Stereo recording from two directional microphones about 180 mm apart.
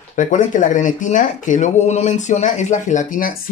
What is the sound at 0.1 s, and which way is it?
Speech, 45° left (ahead or behind).